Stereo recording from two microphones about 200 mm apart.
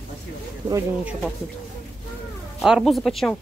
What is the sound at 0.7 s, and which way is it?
Speech, 15° right (ahead or behind).